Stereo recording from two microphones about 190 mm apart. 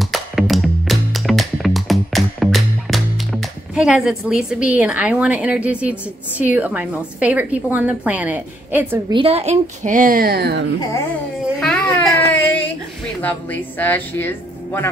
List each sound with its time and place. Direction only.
0.0 s music: centre (ahead or behind)
9.1 s a woman's voice: 30° right (ahead or behind); by 10.7 s 60° right (ahead or behind)
11.6 s baby cry: 5° left (ahead or behind)
13.2 s speech: 10° left (ahead or behind)